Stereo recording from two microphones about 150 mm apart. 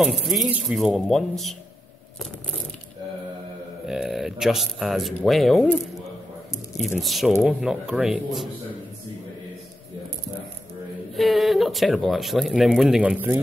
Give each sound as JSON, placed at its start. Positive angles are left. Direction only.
{"t": 0.0, "sound": "speech", "side_deg": -5}
{"t": 3.8, "sound": "speech", "side_deg": -5}
{"t": 6.8, "sound": "speech", "side_deg": 0}
{"t": 11.1, "sound": "speech", "side_deg": 0}